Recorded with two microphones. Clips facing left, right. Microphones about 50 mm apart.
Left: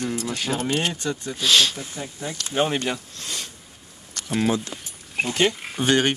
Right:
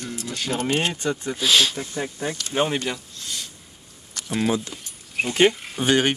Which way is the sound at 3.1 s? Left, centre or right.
Left.